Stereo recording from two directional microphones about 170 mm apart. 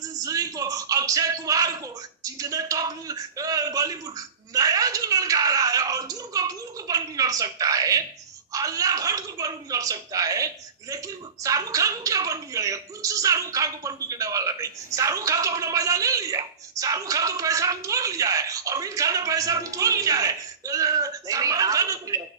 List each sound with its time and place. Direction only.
0.2 s a woman's voice: 20° right (ahead or behind)